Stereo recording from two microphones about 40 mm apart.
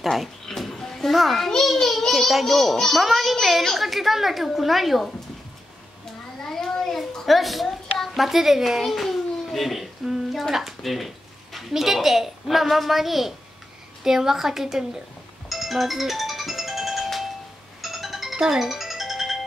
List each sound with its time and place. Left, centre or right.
0.0 s speech: centre
0.5 s children playing: centre
1.8 s a child's voice: centre
6.4 s a sound: centre
8.1 s a child's voice: centre
15.5 s music: centre
18.3 s music: right
18.6 s music: centre